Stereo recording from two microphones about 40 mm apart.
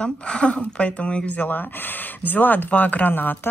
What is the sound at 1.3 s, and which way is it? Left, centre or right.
Speech, left.